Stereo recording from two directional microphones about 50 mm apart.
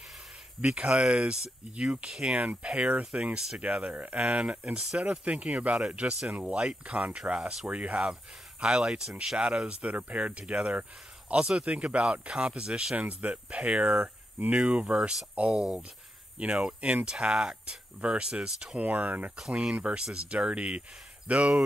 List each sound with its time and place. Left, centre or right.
0.6 s speech: right
16.3 s speech: right
18.8 s speech: right
19.5 s speech: centre